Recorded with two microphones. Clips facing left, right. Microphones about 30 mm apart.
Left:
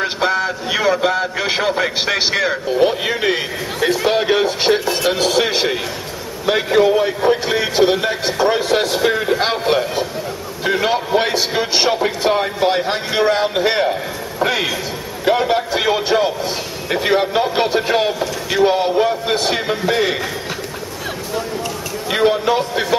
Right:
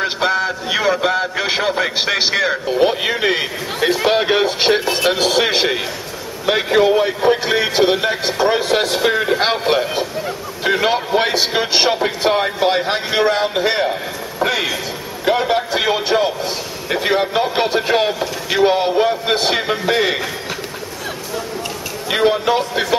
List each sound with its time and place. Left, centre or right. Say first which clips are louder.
0.0 s a man's voice: even; centre
4.7 s a man's voice: right 1 dB; right
22.1 s a man's voice: even; centre